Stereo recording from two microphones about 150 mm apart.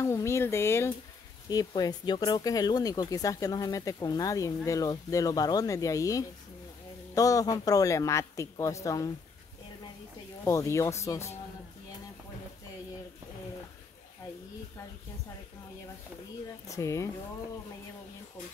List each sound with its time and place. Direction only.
0.0 s speech: 20° left (ahead or behind)
10.4 s speech: 20° left (ahead or behind)
16.6 s speech: 20° left (ahead or behind)